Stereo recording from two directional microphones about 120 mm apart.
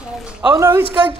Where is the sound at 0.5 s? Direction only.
25° right (ahead or behind).